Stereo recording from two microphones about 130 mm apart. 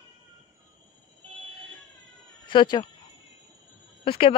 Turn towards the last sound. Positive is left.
turn(degrees=45)  # may be behind; listen again after turning